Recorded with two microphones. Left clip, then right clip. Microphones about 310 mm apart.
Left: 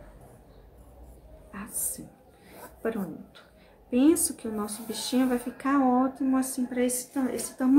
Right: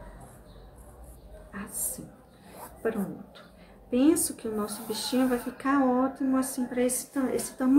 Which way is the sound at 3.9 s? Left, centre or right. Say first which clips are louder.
Left 1 dB; centre.